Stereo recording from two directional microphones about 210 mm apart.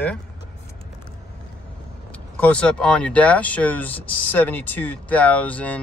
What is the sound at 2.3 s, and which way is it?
Speech, 5° left (ahead or behind).